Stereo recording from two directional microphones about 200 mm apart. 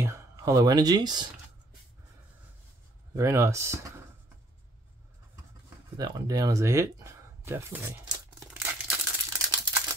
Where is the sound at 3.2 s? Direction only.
15° right (ahead or behind).